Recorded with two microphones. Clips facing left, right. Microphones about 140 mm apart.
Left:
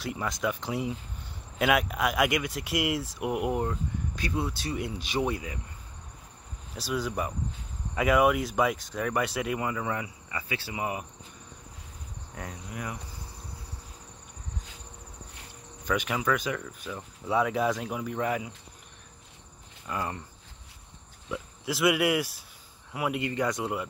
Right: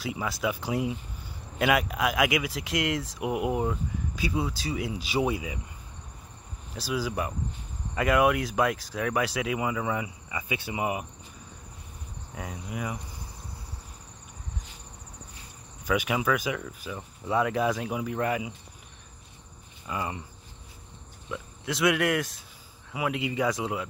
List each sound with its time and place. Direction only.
0.0 s speech: 5° right (ahead or behind)
6.7 s speech: centre (ahead or behind)
10.0 s cricket: 15° right (ahead or behind)
12.4 s cricket: 5° right (ahead or behind)
15.8 s speech: 5° right (ahead or behind)
19.9 s cricket: 5° right (ahead or behind)
21.3 s speech: 5° left (ahead or behind)